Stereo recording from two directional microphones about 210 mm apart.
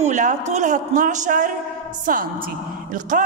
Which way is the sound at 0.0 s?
35° right (ahead or behind).